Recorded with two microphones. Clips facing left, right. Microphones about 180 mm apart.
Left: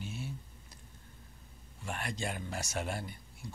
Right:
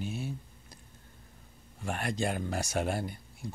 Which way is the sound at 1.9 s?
50° right (ahead or behind).